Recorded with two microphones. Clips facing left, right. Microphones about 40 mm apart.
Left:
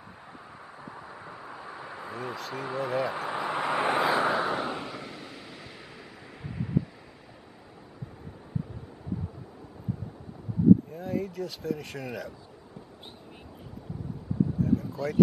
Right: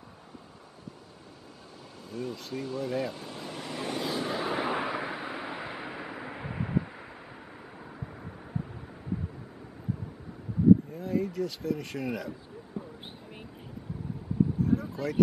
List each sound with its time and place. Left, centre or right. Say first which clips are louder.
1.5 s vehicle: left 9 dB; left
2.5 s speech: left 2 dB; left
4.5 s vehicle: even; centre
4.7 s vehicle: right 6 dB; right
10.9 s speech: right 1 dB; centre
12.8 s a sound: right 10 dB; right
14.6 s a sound: left 1 dB; centre